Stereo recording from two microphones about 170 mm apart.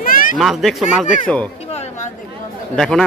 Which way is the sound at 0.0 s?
55° left (ahead or behind).